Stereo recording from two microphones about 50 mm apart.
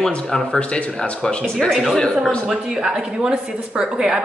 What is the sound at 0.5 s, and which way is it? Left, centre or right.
Speech, left.